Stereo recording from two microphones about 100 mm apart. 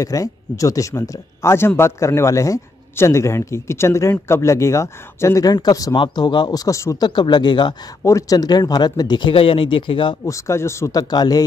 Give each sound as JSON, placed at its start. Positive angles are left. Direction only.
{"t": 0.0, "sound": "a man's voice", "side_deg": 35}
{"t": 5.9, "sound": "speech", "side_deg": 45}
{"t": 7.0, "sound": "speech", "side_deg": 45}
{"t": 8.0, "sound": "speech", "side_deg": 30}
{"t": 9.3, "sound": "speech", "side_deg": 65}
{"t": 10.2, "sound": "a man's voice", "side_deg": 30}
{"t": 11.0, "sound": "speech", "side_deg": 40}